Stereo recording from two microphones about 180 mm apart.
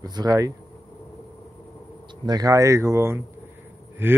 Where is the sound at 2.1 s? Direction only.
25° right (ahead or behind).